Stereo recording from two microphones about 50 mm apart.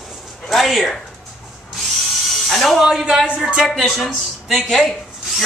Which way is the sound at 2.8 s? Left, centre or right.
Centre.